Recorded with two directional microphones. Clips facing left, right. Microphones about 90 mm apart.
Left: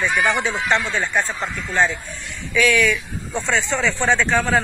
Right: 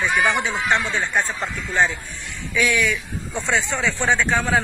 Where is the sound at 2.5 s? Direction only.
20° right (ahead or behind).